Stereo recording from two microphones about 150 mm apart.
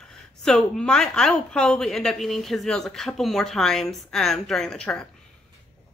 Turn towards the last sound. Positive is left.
turn(degrees=5)  # may be behind; listen again after turning